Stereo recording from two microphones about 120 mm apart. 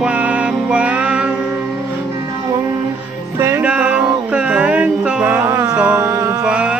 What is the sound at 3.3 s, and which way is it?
Music, 20° right (ahead or behind).